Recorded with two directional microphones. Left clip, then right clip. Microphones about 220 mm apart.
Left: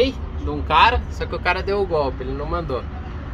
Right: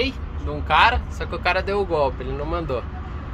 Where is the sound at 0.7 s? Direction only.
40° right (ahead or behind).